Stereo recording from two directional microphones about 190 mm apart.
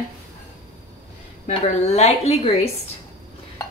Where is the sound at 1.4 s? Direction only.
35° left (ahead or behind).